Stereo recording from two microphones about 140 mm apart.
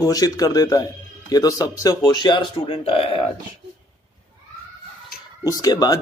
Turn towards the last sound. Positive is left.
turn(degrees=25)  # may be behind; listen again after turning